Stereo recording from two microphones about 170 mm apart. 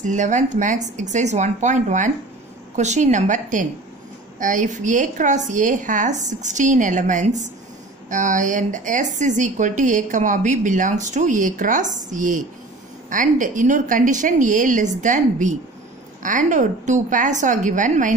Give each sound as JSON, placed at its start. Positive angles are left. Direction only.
{"t": 0.0, "sound": "speech", "side_deg": -45}